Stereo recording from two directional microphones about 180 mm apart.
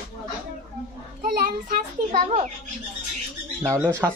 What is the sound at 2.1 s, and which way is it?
Speech, 40° right (ahead or behind).